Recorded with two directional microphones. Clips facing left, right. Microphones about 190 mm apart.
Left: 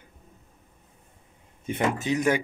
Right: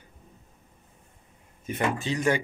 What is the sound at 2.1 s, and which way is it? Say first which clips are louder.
Speech: left 2 dB; 10° left (ahead or behind).